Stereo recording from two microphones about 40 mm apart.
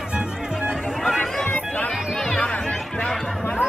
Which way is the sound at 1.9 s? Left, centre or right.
Centre.